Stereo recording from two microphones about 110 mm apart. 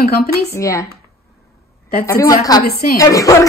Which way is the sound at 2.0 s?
30° left (ahead or behind).